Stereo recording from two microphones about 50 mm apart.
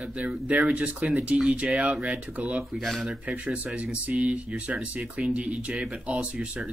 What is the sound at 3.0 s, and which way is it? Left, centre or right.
Speech, right.